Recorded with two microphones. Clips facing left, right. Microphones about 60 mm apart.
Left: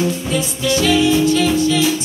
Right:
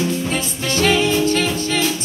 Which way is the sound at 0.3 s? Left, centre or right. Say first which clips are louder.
Left 4 dB; right.